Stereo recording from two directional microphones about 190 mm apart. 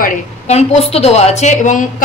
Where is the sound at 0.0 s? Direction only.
35° left (ahead or behind).